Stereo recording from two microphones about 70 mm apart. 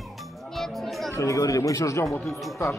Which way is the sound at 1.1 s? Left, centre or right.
Left.